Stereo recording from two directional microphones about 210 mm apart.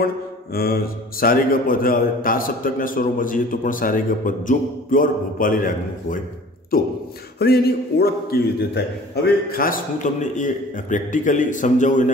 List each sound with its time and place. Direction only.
0.0 s mantra: 45° left (ahead or behind)
1.2 s a man's voice: 45° left (ahead or behind)